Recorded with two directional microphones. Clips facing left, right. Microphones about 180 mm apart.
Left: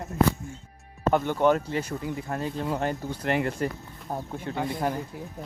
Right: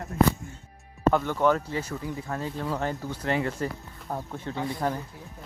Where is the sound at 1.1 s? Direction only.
20° left (ahead or behind).